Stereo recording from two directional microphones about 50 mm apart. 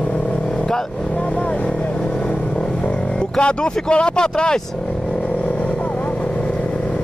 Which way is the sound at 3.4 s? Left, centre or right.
Left.